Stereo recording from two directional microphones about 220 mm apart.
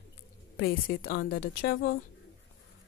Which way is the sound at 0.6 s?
45° left (ahead or behind).